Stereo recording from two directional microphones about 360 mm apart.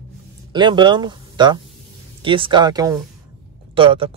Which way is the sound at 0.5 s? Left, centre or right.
Centre.